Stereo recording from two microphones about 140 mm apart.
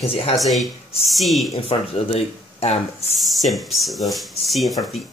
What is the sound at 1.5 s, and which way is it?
Speech, 45° left (ahead or behind).